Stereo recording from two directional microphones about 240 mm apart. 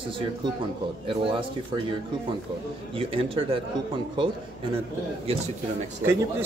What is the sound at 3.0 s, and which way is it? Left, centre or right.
Speech, right.